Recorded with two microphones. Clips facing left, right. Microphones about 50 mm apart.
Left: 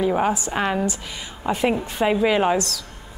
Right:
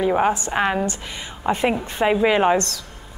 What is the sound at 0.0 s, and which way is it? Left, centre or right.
A woman's voice, centre.